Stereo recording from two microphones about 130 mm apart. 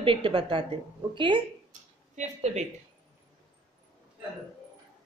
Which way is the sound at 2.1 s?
60° right (ahead or behind).